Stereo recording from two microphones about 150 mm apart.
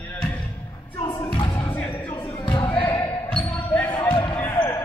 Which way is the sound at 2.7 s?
15° left (ahead or behind).